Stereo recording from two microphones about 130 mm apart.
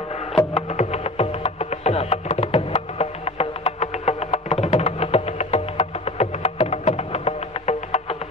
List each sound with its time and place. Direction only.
0.6 s music: 55° left (ahead or behind)